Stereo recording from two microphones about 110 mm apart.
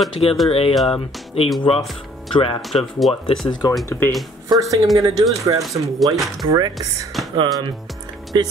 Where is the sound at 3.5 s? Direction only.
40° left (ahead or behind).